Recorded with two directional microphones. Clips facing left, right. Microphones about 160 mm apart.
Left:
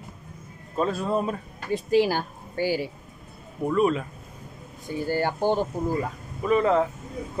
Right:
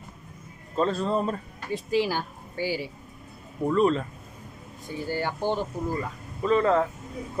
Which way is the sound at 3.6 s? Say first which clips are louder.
Even; 5° left (ahead or behind).